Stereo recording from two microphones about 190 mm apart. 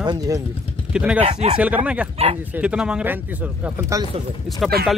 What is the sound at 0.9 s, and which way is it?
Speech, 5° right (ahead or behind).